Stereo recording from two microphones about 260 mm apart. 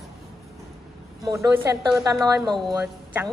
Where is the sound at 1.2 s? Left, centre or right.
Centre.